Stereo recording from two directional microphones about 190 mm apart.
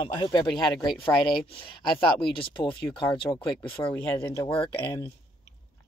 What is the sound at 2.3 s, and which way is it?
Speech, 25° left (ahead or behind).